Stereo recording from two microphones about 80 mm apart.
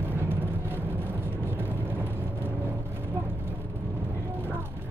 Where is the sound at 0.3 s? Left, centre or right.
Right.